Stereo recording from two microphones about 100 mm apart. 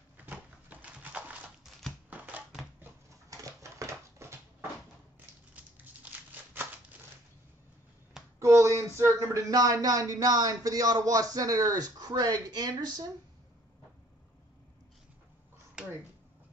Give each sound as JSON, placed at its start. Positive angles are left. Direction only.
{"t": 0.2, "sound": "a sound", "side_deg": -15}
{"t": 1.6, "sound": "typewriter", "side_deg": 0}
{"t": 2.0, "sound": "typewriter", "side_deg": -15}
{"t": 3.3, "sound": "dog", "side_deg": -30}
{"t": 8.4, "sound": "a sound", "side_deg": -30}
{"t": 8.9, "sound": "speech", "side_deg": -30}